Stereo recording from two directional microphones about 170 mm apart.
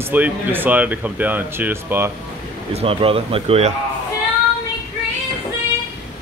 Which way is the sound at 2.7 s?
35° right (ahead or behind).